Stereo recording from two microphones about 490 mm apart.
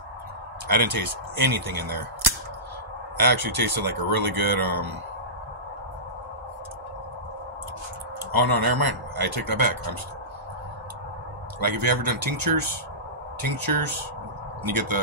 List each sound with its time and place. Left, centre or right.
0.7 s speech: right
3.2 s speech: right
8.3 s speech: right
11.6 s speech: right